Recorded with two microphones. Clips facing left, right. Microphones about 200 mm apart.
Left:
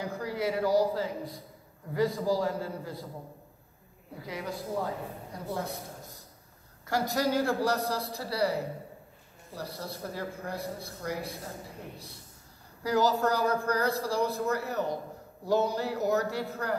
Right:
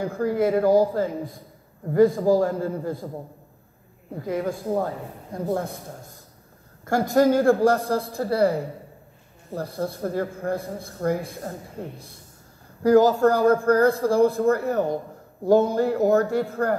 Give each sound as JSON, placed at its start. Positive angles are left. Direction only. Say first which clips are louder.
{"t": 0.0, "sound": "speech", "louder": "right 9 dB", "side_deg": -50}
{"t": 4.1, "sound": "speech", "louder": "right 10 dB", "side_deg": -50}
{"t": 12.8, "sound": "speech", "louder": "right 10 dB", "side_deg": -50}